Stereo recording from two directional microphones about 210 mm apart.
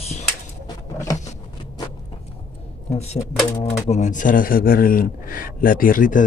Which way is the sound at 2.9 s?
30° left (ahead or behind).